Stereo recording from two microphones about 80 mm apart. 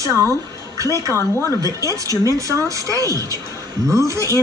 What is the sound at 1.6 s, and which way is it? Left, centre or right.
Speech, right.